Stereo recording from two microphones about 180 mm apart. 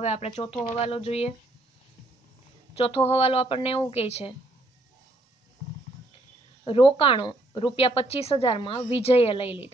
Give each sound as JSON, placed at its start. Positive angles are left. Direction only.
{"t": 0.0, "sound": "speech", "side_deg": 35}
{"t": 2.7, "sound": "speech", "side_deg": 35}
{"t": 6.6, "sound": "speech", "side_deg": 30}